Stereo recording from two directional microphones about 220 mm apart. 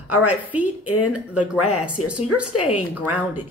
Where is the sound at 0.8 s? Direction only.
90° left.